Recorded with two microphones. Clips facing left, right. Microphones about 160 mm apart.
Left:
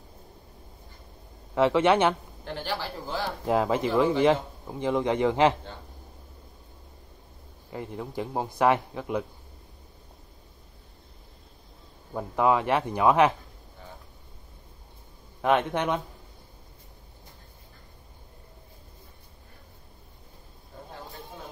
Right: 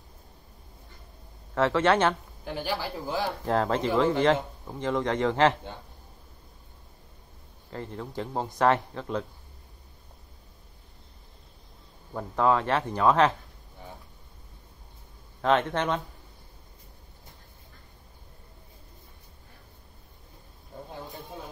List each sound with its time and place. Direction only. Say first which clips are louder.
1.5 s speech: left 2 dB; 15° left (ahead or behind)
2.4 s a man's voice: right 1 dB; 10° right (ahead or behind)
3.4 s speech: left 2 dB; 10° left (ahead or behind)
7.7 s speech: left 1 dB; 10° left (ahead or behind)
12.1 s speech: left 1 dB; 10° left (ahead or behind)
15.4 s speech: even; 10° left (ahead or behind)
20.7 s a sound: right 3 dB; 15° right (ahead or behind)